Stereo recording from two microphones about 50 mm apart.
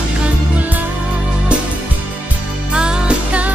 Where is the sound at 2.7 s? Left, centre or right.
Centre.